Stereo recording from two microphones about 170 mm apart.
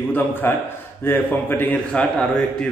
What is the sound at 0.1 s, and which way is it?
A man's voice, 10° left (ahead or behind).